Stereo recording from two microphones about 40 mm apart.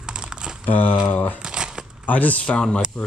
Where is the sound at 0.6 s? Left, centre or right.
Left.